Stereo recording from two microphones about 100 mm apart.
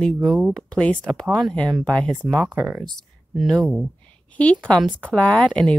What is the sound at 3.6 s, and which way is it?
Speech, 5° left (ahead or behind).